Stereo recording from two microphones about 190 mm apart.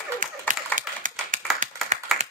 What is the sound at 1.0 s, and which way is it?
Clapping, 45° right (ahead or behind).